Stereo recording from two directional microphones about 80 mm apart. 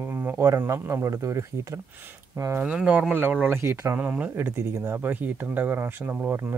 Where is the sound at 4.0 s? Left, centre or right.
Centre.